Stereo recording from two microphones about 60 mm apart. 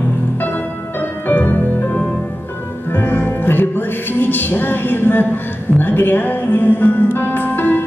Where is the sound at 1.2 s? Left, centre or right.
Left.